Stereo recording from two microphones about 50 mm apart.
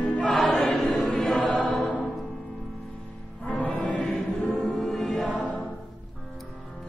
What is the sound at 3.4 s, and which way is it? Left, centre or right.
Music, left.